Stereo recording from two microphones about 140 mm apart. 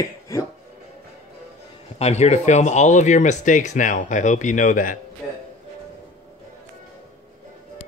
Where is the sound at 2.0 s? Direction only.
50° left (ahead or behind); by 5.0 s 70° left (ahead or behind).